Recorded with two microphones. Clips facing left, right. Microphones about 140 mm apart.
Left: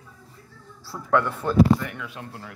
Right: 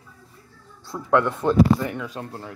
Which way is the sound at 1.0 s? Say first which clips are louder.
Right 3 dB; 20° right (ahead or behind).